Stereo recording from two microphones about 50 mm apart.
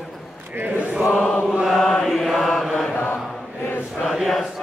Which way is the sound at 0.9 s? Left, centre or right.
Centre.